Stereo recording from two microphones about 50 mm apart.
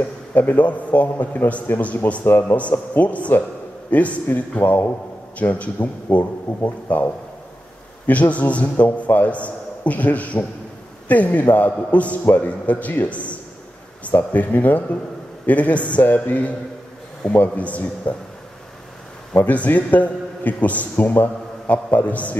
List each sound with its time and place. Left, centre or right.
0.3 s a man's voice: left
8.1 s a man's voice: left
19.3 s a man's voice: left